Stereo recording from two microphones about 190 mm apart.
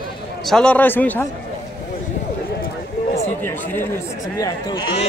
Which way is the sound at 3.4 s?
10° left (ahead or behind).